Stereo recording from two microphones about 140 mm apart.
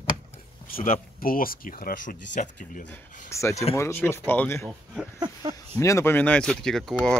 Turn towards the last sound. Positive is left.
turn(degrees=5)  # may be behind; listen again after turning